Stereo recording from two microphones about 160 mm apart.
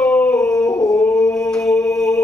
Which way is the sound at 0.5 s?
20° left (ahead or behind).